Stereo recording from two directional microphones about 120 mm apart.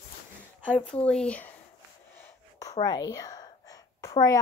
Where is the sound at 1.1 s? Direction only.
10° left (ahead or behind).